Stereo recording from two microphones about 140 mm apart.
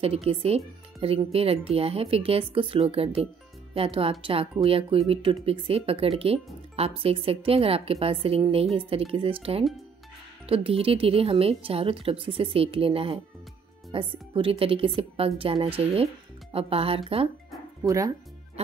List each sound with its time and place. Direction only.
0.0 s speech: 45° right (ahead or behind)
17.8 s speech: 25° right (ahead or behind)